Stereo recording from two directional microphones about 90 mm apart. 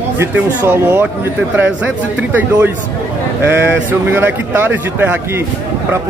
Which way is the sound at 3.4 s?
20° right (ahead or behind).